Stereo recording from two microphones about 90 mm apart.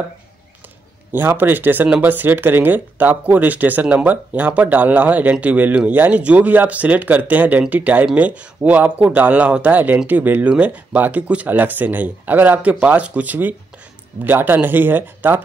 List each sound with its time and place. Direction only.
1.1 s speech: 20° right (ahead or behind)